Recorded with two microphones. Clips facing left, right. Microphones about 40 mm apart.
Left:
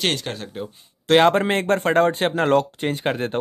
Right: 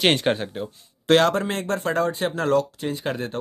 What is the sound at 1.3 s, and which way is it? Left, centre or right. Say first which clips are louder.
Speech: left 5 dB; left.